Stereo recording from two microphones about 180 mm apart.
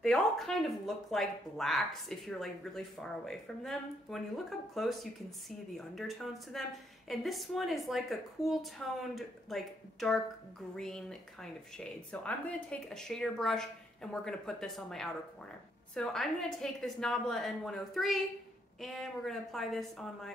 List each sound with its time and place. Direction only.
0.0 s a woman's voice: 5° left (ahead or behind)